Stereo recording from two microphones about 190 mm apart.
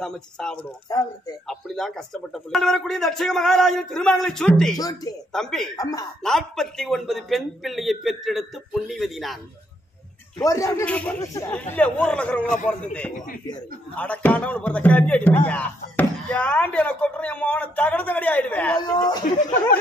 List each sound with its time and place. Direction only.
0.0 s a man's voice: 5° left (ahead or behind)
0.8 s speech: 20° left (ahead or behind)
1.5 s a man's voice: centre (ahead or behind)
4.7 s speech: 20° left (ahead or behind)
5.3 s a man's voice: 5° left (ahead or behind)
5.8 s speech: 20° left (ahead or behind)
6.2 s a man's voice: centre (ahead or behind)
10.4 s speech: 15° left (ahead or behind)
13.9 s speech: 5° left (ahead or behind)
18.8 s speech: 20° left (ahead or behind)